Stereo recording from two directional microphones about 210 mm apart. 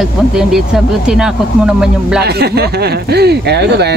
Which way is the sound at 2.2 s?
50° right (ahead or behind).